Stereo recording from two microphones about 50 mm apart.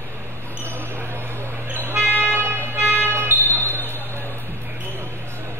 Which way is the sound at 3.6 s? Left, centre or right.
Left.